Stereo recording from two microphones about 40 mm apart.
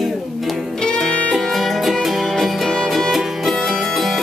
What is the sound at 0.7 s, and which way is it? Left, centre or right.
Music, centre.